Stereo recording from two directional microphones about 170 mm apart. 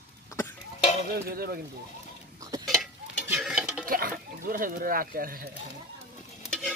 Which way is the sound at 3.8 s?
60° right (ahead or behind).